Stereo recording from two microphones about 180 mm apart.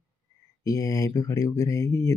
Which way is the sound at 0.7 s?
20° left (ahead or behind).